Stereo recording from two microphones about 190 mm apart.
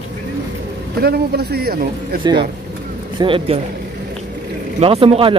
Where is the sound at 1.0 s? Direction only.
55° right (ahead or behind).